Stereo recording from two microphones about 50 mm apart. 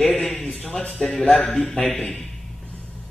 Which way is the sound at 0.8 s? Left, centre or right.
Left.